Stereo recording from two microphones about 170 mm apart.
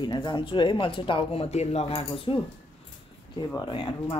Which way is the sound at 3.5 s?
25° left (ahead or behind).